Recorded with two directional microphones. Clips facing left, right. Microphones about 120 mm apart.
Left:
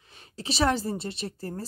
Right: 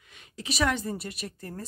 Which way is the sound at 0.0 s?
35° left (ahead or behind).